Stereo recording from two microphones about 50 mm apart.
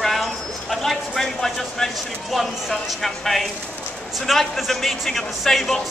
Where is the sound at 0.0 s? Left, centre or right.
Centre.